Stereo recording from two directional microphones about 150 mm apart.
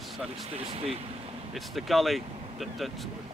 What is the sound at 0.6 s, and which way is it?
Speech, 40° right (ahead or behind).